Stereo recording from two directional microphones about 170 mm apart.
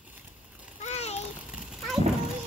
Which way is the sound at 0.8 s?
40° left (ahead or behind).